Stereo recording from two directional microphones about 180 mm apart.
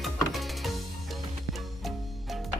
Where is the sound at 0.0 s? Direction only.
Centre (ahead or behind).